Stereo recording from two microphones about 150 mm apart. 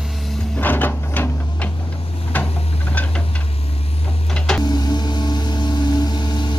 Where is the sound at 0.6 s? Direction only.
15° left (ahead or behind).